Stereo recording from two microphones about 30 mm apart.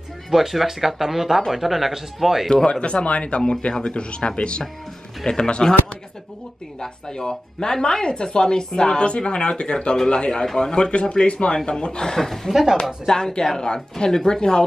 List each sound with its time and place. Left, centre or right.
0.3 s speech: centre
2.5 s speech: left
5.2 s speech: left
10.4 s speech: centre
10.9 s speech: left
11.5 s speech: left
12.2 s speech: centre
13.1 s speech: left